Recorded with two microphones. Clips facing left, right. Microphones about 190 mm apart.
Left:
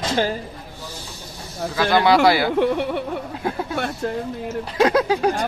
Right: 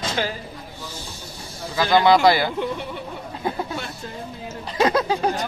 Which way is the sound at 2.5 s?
65° left (ahead or behind).